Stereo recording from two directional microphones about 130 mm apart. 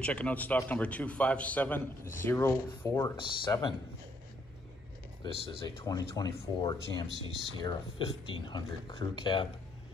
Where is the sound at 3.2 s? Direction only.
35° left (ahead or behind).